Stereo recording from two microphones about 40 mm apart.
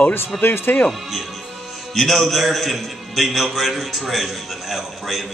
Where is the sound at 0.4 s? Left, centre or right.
Left.